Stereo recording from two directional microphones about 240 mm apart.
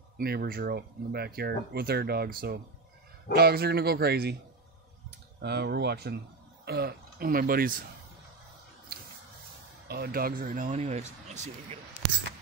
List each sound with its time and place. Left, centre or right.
0.2 s speech: right
5.4 s speech: right
9.8 s speech: right